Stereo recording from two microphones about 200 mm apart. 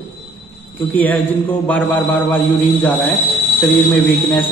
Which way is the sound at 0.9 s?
10° left (ahead or behind).